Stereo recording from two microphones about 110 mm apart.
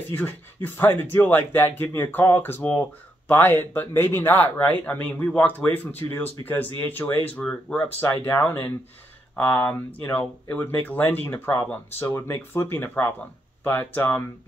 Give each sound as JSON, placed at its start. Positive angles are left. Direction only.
{"t": 0.1, "sound": "a man's voice", "side_deg": 15}